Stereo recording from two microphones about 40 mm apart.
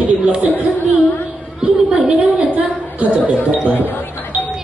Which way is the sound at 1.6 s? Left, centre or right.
Right.